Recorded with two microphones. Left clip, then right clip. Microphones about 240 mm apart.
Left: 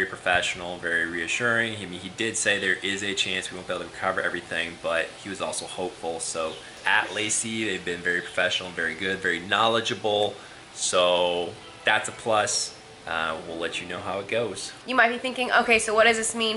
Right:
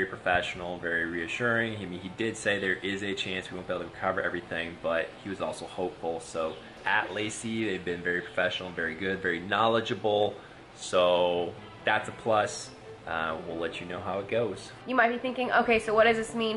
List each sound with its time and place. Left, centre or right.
0.0 s speech: centre
5.6 s speech: right
6.3 s speech: centre
10.0 s speech: right
10.9 s speech: centre